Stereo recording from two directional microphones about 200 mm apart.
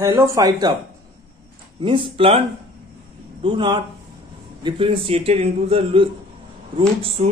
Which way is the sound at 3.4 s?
25° right (ahead or behind).